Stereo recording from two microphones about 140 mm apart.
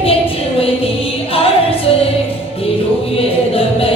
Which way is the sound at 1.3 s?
40° left (ahead or behind).